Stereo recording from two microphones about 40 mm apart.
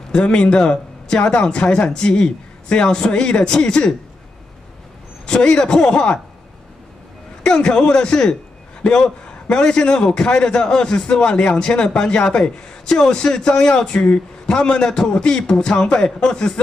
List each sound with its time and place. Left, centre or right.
0.1 s a man's voice: left
5.2 s a man's voice: left
7.4 s a man's voice: left